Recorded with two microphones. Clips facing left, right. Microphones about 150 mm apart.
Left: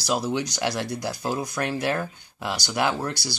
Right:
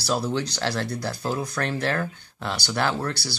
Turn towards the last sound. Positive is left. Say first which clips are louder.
# even
turn(degrees=15)  # may be behind; listen again after turning